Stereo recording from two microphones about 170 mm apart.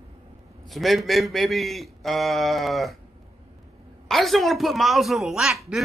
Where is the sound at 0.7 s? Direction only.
Centre (ahead or behind).